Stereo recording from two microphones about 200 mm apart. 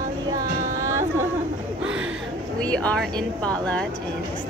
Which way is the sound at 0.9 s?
15° right (ahead or behind).